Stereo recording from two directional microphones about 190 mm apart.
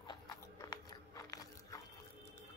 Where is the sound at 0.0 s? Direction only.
20° left (ahead or behind).